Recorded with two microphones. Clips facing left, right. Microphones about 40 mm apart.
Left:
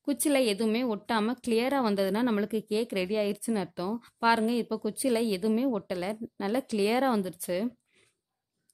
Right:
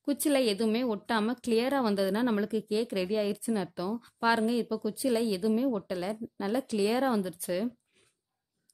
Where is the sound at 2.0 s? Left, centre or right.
Centre; by 7.3 s left.